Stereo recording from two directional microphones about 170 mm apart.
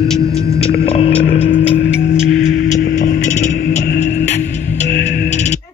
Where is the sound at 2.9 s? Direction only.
50° left (ahead or behind).